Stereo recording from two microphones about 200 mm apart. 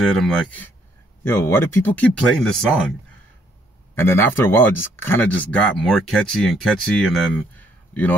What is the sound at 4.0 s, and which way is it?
Speech, 10° left (ahead or behind).